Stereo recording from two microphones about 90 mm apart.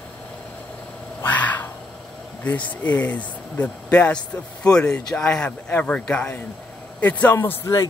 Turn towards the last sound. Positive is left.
turn(degrees=30)  # may be behind; listen again after turning